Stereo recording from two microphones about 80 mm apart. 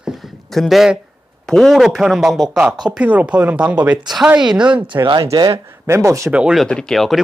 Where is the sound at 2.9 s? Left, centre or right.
Centre.